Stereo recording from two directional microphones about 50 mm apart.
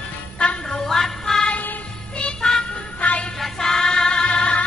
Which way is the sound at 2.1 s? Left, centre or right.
Centre.